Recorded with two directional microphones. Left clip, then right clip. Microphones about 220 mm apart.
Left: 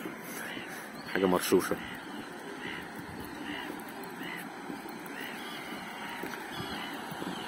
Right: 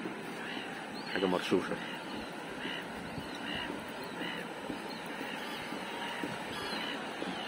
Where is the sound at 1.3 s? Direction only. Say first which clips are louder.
Left 5 dB; 55° left (ahead or behind).